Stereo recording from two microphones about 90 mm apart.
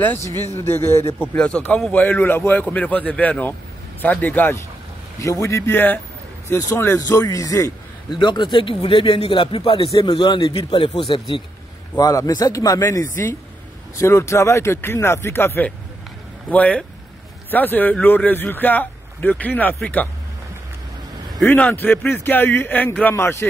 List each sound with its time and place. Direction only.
0.2 s a man's voice: 30° left (ahead or behind)
1.3 s a man's voice: 15° left (ahead or behind)
5.2 s a man's voice: 35° left (ahead or behind)
8.2 s speech: 60° left (ahead or behind); by 9.8 s 90° left
10.0 s speech: 55° left (ahead or behind)
10.7 s speech: 65° left (ahead or behind)
12.0 s a man's voice: 40° left (ahead or behind); by 20.1 s 15° left (ahead or behind)
21.5 s a man's voice: 20° left (ahead or behind)